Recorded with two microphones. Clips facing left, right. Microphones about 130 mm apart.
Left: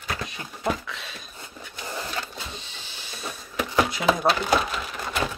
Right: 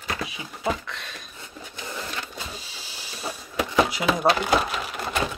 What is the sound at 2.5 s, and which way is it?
Power windows, 5° right (ahead or behind).